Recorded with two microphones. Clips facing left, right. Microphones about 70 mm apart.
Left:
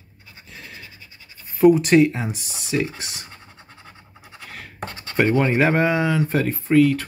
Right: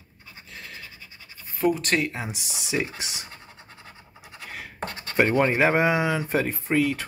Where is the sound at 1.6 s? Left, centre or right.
Centre.